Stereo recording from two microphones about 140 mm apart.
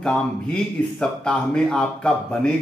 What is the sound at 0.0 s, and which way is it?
A man's voice, 5° left (ahead or behind).